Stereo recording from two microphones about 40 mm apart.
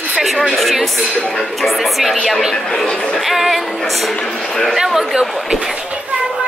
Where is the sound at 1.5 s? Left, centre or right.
Centre.